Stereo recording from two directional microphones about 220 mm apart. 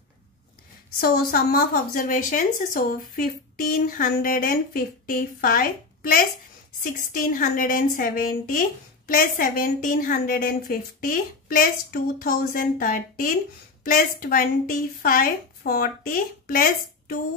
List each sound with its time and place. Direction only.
1.0 s a woman's voice: 40° left (ahead or behind)